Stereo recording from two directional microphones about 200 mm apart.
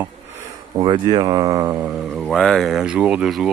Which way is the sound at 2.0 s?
Centre (ahead or behind).